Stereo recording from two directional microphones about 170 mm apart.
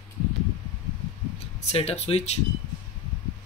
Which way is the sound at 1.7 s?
40° left (ahead or behind).